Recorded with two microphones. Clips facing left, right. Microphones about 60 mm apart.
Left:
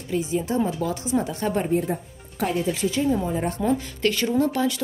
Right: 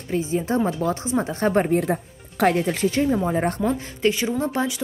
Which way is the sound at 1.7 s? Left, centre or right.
Right.